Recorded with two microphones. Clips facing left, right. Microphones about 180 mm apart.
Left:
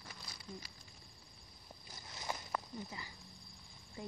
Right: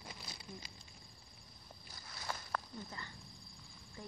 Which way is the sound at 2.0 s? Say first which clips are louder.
Left 2 dB; 20° left (ahead or behind).